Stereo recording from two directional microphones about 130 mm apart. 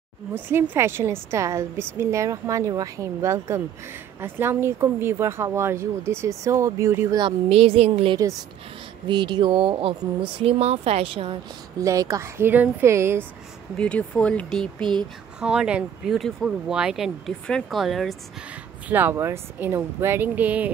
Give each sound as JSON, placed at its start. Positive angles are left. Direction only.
{"t": 0.3, "sound": "speech", "side_deg": -20}
{"t": 7.2, "sound": "speech", "side_deg": -45}
{"t": 9.0, "sound": "speech", "side_deg": -35}
{"t": 11.8, "sound": "speech", "side_deg": -25}
{"t": 13.7, "sound": "speech", "side_deg": 10}
{"t": 15.4, "sound": "speech", "side_deg": -5}
{"t": 18.9, "sound": "speech", "side_deg": -15}